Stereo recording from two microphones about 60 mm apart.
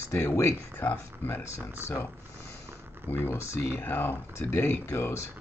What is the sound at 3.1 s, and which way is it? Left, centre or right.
Speech, left.